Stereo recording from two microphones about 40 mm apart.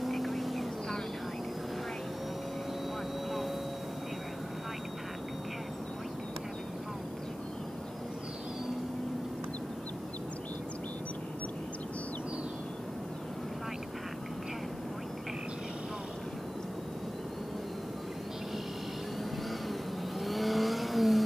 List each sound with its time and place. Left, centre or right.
0.0 s vehicle: centre
20.2 s vehicle: centre